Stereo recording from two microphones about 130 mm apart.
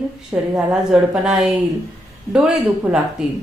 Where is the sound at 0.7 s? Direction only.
5° right (ahead or behind).